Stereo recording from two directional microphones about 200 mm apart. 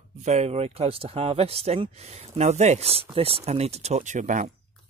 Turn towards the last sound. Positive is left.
turn(degrees=-40)  # may be behind; listen again after turning